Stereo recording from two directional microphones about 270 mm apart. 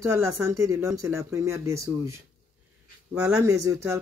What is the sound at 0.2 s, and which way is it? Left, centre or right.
Speech, centre.